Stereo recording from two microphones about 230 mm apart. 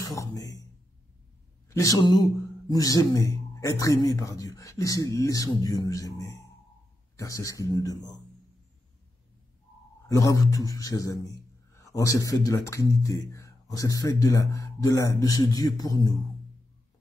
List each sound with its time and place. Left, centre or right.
0.0 s speech: centre
1.7 s a man's voice: centre
10.0 s a man's voice: centre